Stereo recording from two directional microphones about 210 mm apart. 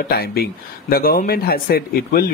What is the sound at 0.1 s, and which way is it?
Speech, 45° left (ahead or behind).